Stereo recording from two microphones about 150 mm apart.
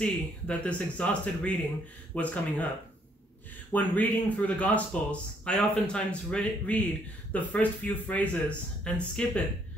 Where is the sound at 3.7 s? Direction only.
10° left (ahead or behind).